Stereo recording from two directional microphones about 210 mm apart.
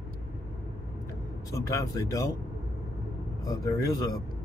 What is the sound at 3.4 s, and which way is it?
Speech, 15° left (ahead or behind).